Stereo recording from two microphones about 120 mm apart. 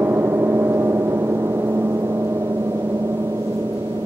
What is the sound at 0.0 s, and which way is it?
Gong, 20° right (ahead or behind).